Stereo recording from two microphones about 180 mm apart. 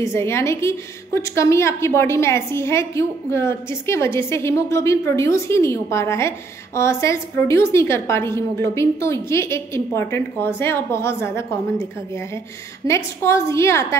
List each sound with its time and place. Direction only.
0.0 s a woman's voice: 15° left (ahead or behind)
12.8 s a woman's voice: 15° left (ahead or behind)